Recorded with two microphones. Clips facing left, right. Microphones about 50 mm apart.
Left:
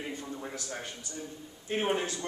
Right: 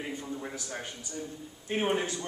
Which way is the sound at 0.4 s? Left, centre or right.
Centre.